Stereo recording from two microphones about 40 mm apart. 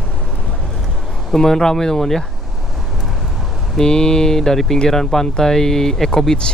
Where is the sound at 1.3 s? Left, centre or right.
Centre.